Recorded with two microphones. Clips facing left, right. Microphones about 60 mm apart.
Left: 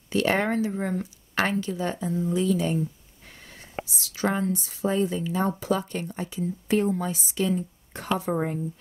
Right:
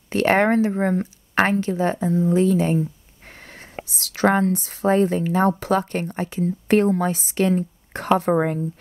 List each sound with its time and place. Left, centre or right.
0.1 s speech: right